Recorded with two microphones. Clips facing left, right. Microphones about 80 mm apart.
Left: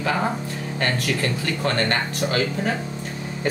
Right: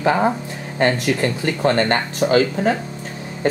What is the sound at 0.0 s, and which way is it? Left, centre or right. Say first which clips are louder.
Speech: right 6 dB; right.